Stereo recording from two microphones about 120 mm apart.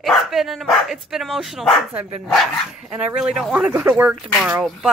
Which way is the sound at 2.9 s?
15° right (ahead or behind).